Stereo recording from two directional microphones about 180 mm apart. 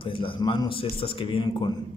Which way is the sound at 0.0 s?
30° left (ahead or behind).